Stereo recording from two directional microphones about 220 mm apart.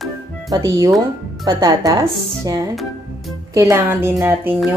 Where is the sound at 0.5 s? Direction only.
15° right (ahead or behind).